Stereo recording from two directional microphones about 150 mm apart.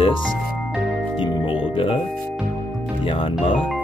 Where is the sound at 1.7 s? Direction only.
35° left (ahead or behind).